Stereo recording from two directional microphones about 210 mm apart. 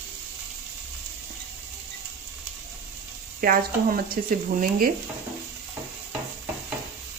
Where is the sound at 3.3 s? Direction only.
45° right (ahead or behind).